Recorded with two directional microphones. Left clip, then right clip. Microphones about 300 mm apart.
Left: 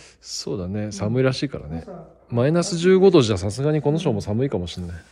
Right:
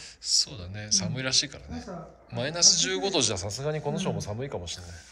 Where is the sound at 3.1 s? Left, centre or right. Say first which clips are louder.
Left 9 dB; left.